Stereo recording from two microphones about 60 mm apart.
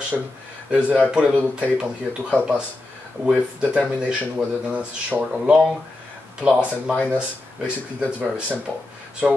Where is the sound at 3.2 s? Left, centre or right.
Centre.